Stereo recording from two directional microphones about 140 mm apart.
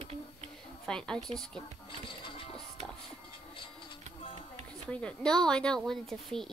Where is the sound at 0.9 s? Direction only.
5° left (ahead or behind).